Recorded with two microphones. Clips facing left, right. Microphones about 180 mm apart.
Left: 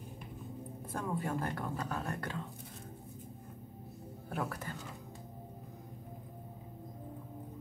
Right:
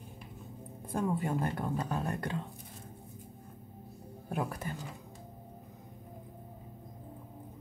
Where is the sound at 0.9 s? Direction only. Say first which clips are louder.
Right 5 dB; 20° right (ahead or behind).